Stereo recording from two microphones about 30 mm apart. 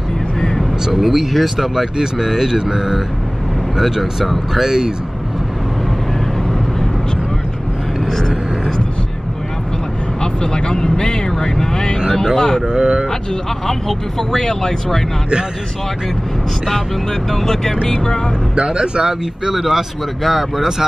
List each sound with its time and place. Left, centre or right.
0.9 s speech: centre
2.0 s speech: centre
4.6 s speech: centre
10.2 s vehicle: left
12.4 s a sound: left
12.6 s a sound: right
13.7 s speech: centre
17.4 s speech: centre
18.5 s speech: right
19.5 s speech: centre